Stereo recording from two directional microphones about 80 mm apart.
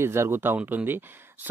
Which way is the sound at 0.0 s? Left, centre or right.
Right.